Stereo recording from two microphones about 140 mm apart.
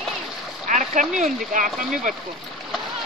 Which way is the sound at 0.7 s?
65° right (ahead or behind).